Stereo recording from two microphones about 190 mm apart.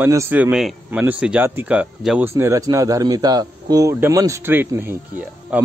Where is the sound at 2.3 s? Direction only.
15° right (ahead or behind).